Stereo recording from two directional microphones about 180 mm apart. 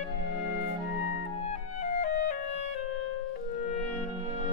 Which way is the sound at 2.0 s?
40° left (ahead or behind).